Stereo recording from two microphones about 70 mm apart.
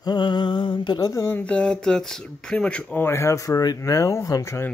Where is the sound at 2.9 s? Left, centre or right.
Left.